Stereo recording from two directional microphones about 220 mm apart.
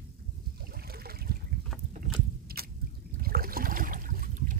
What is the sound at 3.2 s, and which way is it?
Trickle, 40° right (ahead or behind).